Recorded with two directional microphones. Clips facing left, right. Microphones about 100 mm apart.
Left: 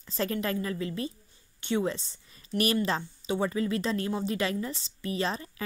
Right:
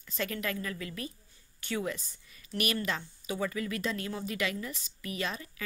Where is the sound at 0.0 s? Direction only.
30° left (ahead or behind).